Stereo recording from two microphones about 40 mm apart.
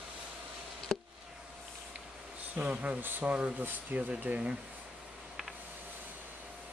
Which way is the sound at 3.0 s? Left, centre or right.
Right.